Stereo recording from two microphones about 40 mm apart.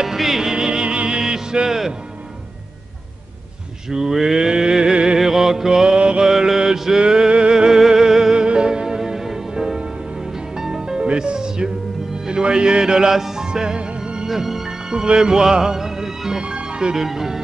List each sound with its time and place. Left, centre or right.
0.0 s music: centre
3.9 s mantra: centre
4.9 s music: centre
5.2 s mantra: centre
6.2 s mantra: centre
7.0 s music: centre
7.5 s music: centre
12.3 s a man's voice: right
13.5 s music: centre
14.3 s music: centre
17.0 s speech: centre